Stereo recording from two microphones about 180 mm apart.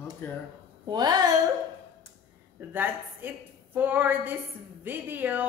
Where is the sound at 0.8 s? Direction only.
20° right (ahead or behind).